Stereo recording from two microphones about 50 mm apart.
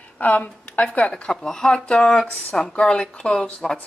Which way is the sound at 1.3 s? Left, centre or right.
Centre.